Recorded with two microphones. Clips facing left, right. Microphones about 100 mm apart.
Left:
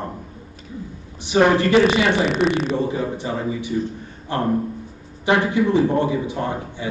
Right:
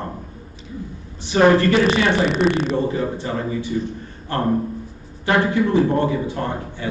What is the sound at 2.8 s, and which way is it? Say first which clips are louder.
A man's voice: right 1 dB; 15° left (ahead or behind).